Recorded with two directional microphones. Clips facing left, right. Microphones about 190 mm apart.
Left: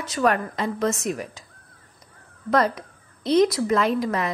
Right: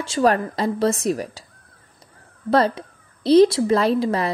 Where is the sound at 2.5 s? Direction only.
30° right (ahead or behind).